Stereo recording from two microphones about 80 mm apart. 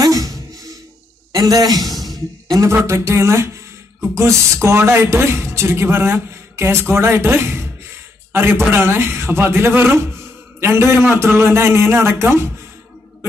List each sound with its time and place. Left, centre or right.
0.0 s a sound: right
1.3 s a man's voice: right
2.6 s speech: right